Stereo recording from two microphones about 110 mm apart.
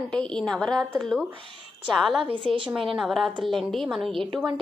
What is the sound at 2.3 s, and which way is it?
Speech, 55° right (ahead or behind).